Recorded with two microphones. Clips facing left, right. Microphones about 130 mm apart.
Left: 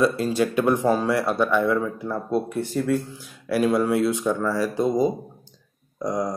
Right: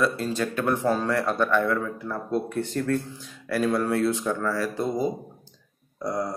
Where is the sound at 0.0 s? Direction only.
15° left (ahead or behind).